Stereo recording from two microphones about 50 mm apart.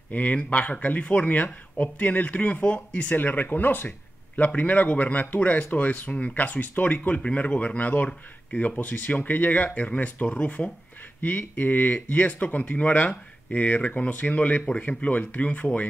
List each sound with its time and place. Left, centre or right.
0.1 s speech: left